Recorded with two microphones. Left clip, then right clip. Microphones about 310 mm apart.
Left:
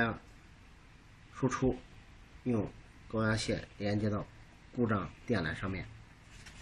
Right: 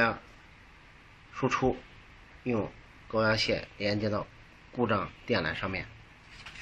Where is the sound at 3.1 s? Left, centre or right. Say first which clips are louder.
Right 7 dB; centre.